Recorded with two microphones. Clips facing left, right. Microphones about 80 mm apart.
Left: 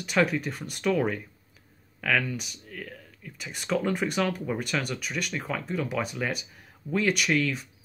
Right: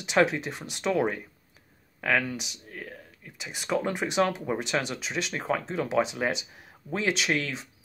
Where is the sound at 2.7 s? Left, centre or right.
Right.